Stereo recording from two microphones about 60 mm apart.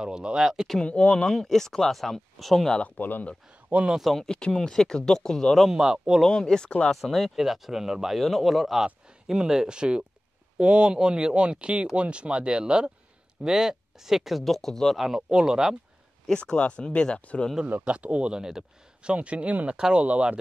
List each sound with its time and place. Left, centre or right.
0.0 s speech: centre
0.8 s speech: centre
2.8 s speech: left
3.7 s speech: centre
4.0 s speech: centre
5.7 s speech: centre
6.2 s speech: centre
7.0 s speech: centre
15.0 s speech: centre
16.3 s speech: centre
17.8 s speech: centre
19.1 s speech: right